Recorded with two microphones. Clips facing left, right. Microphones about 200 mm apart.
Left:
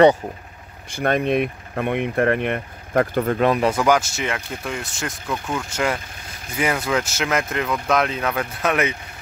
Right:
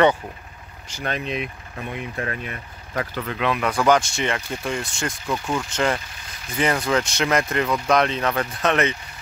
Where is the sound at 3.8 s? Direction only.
5° left (ahead or behind).